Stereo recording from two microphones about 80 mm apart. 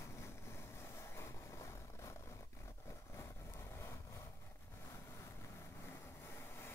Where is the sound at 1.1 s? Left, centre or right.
Left.